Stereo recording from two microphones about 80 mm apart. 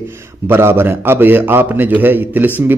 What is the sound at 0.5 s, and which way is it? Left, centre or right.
A man's voice, right.